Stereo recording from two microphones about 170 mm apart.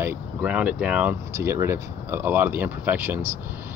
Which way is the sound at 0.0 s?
10° right (ahead or behind).